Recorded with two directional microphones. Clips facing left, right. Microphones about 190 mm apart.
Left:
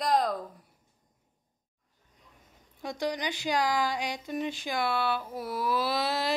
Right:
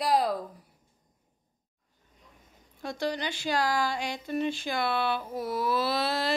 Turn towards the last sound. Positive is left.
turn(degrees=15)  # may be behind; listen again after turning